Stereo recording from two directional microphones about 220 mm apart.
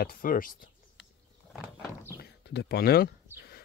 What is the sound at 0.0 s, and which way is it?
Speech, 40° left (ahead or behind).